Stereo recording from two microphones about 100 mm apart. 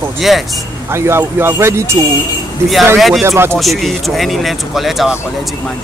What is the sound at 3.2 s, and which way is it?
Speech, 25° right (ahead or behind).